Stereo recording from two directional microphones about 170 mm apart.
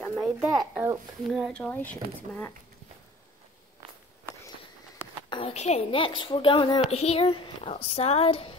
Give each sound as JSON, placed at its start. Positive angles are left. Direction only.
{"t": 0.0, "sound": "a sound", "side_deg": 5}
{"t": 0.4, "sound": "a child's voice", "side_deg": -5}
{"t": 5.3, "sound": "speech", "side_deg": 35}